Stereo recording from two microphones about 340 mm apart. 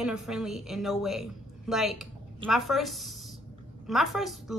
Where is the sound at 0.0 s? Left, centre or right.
Centre.